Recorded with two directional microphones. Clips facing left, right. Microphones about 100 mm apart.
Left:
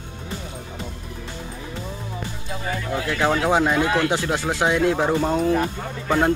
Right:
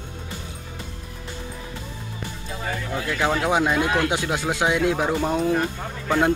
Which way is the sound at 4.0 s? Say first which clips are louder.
Left 2 dB; 15° right (ahead or behind).